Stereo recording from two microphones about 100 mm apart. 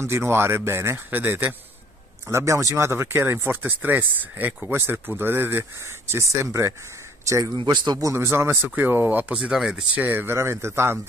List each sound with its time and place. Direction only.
0.0 s speech: 25° right (ahead or behind)
7.5 s speech: 45° right (ahead or behind)
8.0 s speech: 25° right (ahead or behind)
9.4 s speech: 5° right (ahead or behind); by 11.0 s 25° right (ahead or behind)